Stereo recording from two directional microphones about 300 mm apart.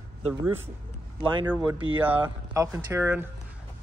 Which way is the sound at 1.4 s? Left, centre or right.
Centre.